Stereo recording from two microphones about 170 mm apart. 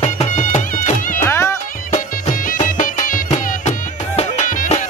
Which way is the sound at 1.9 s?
50° left (ahead or behind).